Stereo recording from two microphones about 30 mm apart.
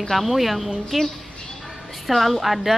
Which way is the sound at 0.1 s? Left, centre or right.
Centre.